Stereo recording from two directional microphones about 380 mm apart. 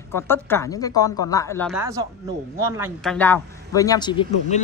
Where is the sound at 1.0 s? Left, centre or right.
Left.